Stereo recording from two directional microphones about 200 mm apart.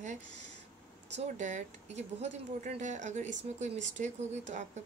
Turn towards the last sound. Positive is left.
turn(degrees=-35)  # may be behind; listen again after turning